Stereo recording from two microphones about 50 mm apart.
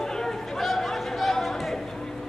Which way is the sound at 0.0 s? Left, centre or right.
Centre.